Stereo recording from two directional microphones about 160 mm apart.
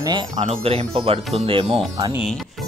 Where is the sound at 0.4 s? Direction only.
40° right (ahead or behind).